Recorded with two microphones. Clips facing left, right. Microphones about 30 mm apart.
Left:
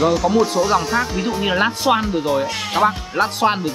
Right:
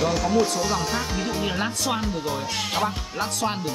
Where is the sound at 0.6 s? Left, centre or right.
Centre.